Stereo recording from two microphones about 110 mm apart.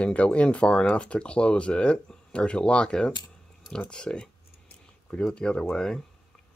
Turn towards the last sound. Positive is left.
turn(degrees=5)  # may be behind; listen again after turning